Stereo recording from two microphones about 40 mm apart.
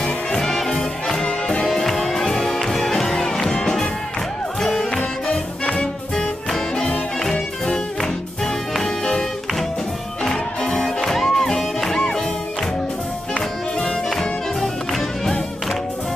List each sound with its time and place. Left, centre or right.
0.4 s music: centre
1.7 s music: centre
10.7 s music: centre
13.3 s music: left
14.6 s music: centre